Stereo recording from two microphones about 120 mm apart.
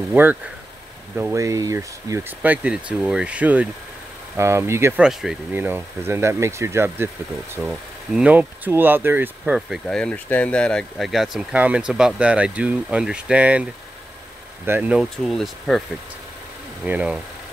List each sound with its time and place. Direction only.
0.1 s speech: 15° right (ahead or behind)
4.4 s speech: 25° right (ahead or behind)
4.9 s speech: 5° right (ahead or behind)
5.5 s speech: 15° right (ahead or behind)
8.1 s speech: 10° right (ahead or behind)
9.7 s speech: 5° left (ahead or behind)
14.7 s speech: 10° right (ahead or behind)
15.2 s speech: 5° left (ahead or behind)
16.8 s speech: 10° right (ahead or behind)